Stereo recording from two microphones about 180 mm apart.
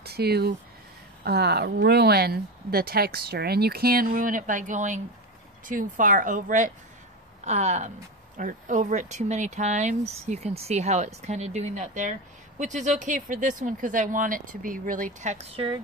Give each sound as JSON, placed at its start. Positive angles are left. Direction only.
{"t": 0.0, "sound": "speech", "side_deg": -60}